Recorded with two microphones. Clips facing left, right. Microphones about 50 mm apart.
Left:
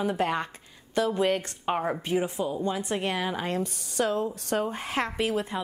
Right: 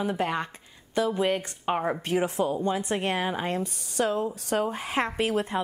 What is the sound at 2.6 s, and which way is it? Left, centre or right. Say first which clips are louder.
A woman's voice: right 1 dB; right.